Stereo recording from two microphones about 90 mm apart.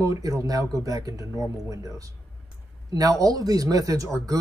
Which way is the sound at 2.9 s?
40° right (ahead or behind).